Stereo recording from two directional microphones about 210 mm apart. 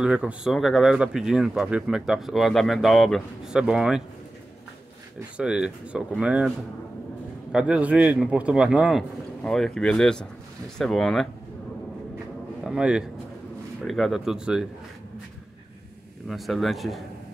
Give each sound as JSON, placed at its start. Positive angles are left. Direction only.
{"t": 0.0, "sound": "speech", "side_deg": -5}
{"t": 5.4, "sound": "speech", "side_deg": -5}
{"t": 7.5, "sound": "speech", "side_deg": -5}
{"t": 12.6, "sound": "speech", "side_deg": -5}
{"t": 16.3, "sound": "speech", "side_deg": 0}